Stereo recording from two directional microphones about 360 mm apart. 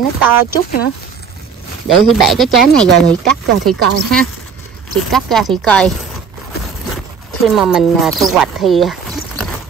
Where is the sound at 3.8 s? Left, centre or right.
Right.